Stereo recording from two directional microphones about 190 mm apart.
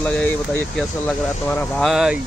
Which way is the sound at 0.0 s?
5° left (ahead or behind).